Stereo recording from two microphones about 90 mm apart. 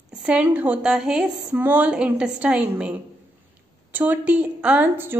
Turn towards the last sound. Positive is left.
turn(degrees=-20)  # may be behind; listen again after turning